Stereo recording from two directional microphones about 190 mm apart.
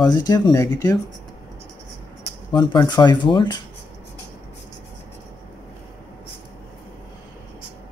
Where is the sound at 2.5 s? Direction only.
25° left (ahead or behind).